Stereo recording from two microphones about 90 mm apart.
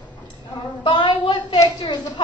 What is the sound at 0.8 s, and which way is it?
Hands, 60° left (ahead or behind).